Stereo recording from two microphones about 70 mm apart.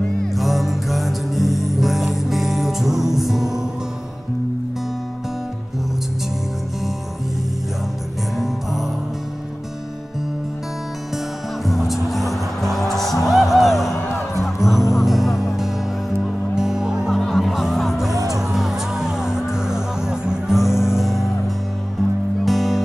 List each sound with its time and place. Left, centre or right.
0.3 s music: centre
8.4 s music: centre
11.6 s music: centre
17.2 s music: centre
18.1 s music: right
18.4 s music: centre
22.4 s music: centre